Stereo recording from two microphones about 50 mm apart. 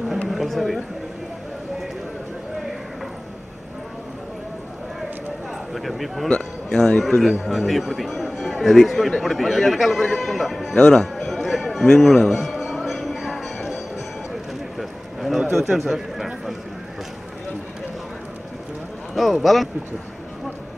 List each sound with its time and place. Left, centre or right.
0.3 s a sound: centre
5.7 s a man's voice: centre
6.2 s a man's voice: centre
7.0 s a man's voice: centre
10.7 s music: centre
14.8 s run: centre
15.3 s a man's voice: centre
19.4 s a man's voice: centre